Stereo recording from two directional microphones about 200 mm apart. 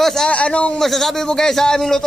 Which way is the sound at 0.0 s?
Centre (ahead or behind).